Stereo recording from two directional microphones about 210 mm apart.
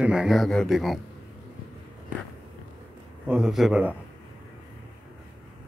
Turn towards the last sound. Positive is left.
turn(degrees=-5)  # may be behind; listen again after turning